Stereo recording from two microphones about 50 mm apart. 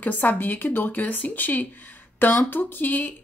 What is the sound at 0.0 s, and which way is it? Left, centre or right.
Speech, left.